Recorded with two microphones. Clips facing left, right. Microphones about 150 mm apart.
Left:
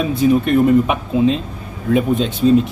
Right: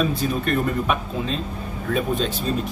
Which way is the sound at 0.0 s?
20° left (ahead or behind).